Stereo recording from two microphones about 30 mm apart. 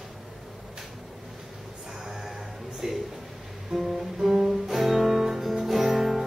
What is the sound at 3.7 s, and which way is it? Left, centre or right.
Guitar, centre.